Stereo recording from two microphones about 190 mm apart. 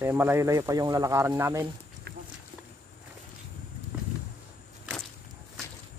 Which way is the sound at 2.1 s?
60° right (ahead or behind).